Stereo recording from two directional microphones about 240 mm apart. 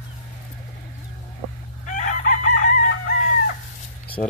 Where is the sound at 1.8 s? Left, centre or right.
Left.